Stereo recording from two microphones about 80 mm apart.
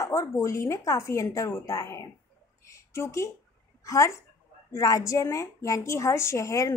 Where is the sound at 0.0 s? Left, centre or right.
Left.